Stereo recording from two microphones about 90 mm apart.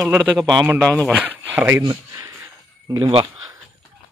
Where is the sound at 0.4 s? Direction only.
Centre (ahead or behind).